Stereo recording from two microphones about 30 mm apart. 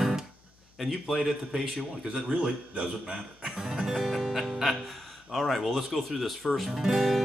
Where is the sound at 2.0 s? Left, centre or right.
Right.